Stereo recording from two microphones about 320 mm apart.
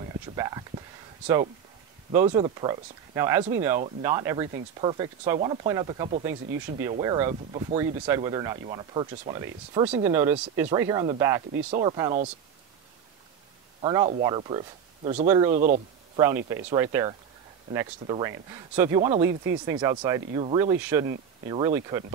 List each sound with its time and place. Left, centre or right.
0.4 s a sound: centre
2.2 s speech: centre
13.7 s speech: centre
15.5 s speech: right
16.2 s speech: centre